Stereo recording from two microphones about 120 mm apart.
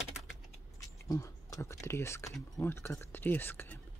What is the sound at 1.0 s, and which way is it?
Speech, 30° left (ahead or behind).